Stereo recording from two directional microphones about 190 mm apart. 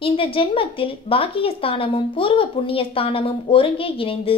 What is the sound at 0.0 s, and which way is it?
A woman's voice, 30° left (ahead or behind).